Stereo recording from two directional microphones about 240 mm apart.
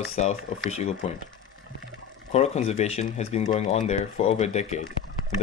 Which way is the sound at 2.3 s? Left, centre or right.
Left.